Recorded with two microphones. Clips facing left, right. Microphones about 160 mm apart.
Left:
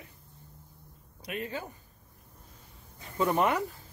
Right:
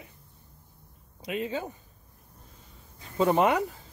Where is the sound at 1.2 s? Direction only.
20° right (ahead or behind).